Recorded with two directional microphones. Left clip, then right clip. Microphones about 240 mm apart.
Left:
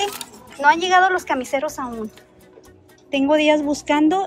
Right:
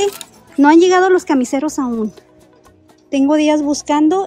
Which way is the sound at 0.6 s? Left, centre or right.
Right.